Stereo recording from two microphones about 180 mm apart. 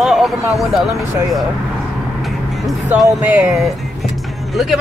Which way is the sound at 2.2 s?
Centre (ahead or behind).